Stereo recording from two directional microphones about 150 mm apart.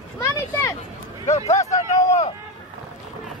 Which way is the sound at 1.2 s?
50° left (ahead or behind).